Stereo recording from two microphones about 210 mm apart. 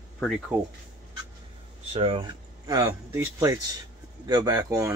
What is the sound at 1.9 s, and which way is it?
Speech, 25° right (ahead or behind).